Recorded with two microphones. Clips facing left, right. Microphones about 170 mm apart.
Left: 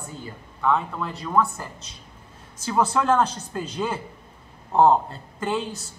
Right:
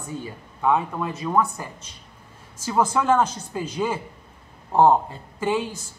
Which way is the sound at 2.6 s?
10° right (ahead or behind).